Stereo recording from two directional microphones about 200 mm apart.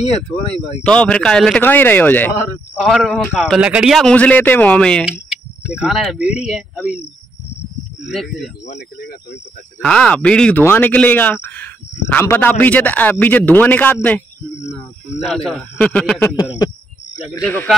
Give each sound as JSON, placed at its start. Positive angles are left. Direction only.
{"t": 0.8, "sound": "speech", "side_deg": 5}
{"t": 2.8, "sound": "speech", "side_deg": 0}
{"t": 8.0, "sound": "speech", "side_deg": 0}
{"t": 8.6, "sound": "speech", "side_deg": 55}
{"t": 9.8, "sound": "speech", "side_deg": 5}
{"t": 15.2, "sound": "speech", "side_deg": 0}